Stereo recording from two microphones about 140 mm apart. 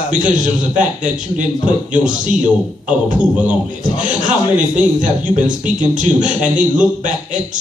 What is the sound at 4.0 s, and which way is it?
Speech, 65° right (ahead or behind).